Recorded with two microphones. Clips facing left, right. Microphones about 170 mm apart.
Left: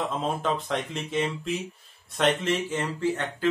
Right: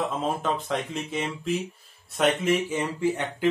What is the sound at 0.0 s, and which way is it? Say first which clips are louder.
Speech: right 1 dB; centre (ahead or behind).